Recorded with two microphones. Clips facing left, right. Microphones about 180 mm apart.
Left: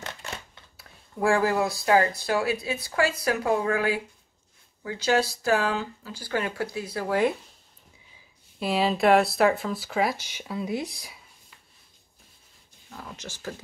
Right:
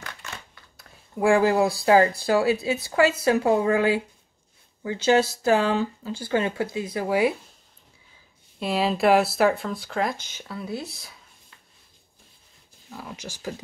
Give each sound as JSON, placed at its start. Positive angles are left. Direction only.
{"t": 1.1, "sound": "speech", "side_deg": -15}
{"t": 8.5, "sound": "speech", "side_deg": 0}
{"t": 12.9, "sound": "speech", "side_deg": -10}